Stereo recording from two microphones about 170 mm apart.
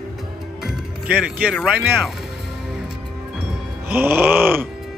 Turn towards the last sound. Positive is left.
turn(degrees=-10)  # may be behind; listen again after turning